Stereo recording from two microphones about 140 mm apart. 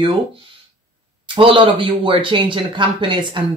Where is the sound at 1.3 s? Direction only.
35° right (ahead or behind).